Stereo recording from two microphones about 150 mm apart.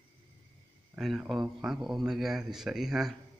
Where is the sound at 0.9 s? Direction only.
Centre (ahead or behind).